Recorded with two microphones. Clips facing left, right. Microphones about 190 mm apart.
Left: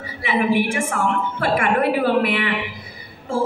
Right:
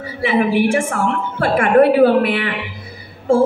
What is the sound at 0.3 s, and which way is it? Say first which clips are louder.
A woman's voice: right 4 dB; 50° right (ahead or behind).